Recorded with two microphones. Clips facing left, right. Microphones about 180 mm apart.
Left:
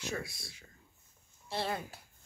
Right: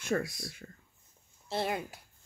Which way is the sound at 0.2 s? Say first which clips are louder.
Right 7 dB; 25° left (ahead or behind).